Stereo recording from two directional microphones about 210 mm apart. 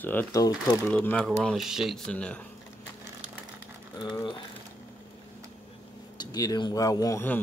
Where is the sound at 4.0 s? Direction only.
20° left (ahead or behind).